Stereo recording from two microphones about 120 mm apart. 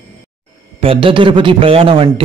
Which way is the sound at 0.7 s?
50° right (ahead or behind).